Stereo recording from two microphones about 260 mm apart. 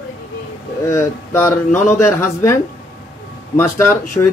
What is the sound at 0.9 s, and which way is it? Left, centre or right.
Speech, centre.